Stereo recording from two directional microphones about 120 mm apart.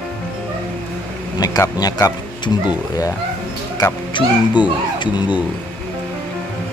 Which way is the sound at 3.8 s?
35° left (ahead or behind).